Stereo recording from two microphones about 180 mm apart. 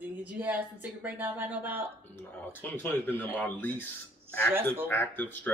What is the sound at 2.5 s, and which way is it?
Speech, 10° left (ahead or behind).